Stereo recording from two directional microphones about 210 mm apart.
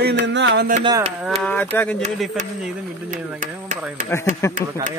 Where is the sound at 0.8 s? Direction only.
20° right (ahead or behind).